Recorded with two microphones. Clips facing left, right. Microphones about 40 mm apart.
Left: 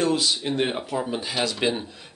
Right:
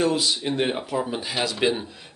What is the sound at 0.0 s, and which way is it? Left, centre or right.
Speech, centre.